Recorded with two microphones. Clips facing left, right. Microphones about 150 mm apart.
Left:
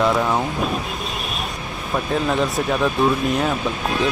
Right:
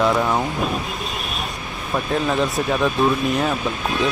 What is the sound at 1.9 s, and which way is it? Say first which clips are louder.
Speech: even; centre (ahead or behind).